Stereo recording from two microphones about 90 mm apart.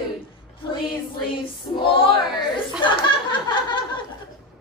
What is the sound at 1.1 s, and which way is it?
Female singing, 65° left (ahead or behind).